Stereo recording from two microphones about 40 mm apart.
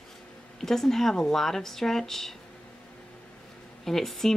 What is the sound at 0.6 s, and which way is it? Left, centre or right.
Speech, centre.